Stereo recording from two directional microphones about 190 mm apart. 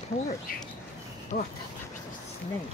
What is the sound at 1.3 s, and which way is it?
Speech, 50° left (ahead or behind).